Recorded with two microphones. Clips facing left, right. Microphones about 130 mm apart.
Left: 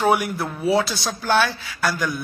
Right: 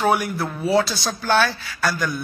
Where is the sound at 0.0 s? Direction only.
5° left (ahead or behind).